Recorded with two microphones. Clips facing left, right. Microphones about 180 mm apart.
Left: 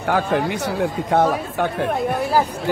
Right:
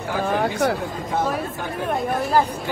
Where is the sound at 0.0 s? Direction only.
65° left (ahead or behind).